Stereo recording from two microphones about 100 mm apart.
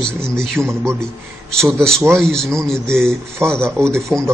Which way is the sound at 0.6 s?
25° right (ahead or behind).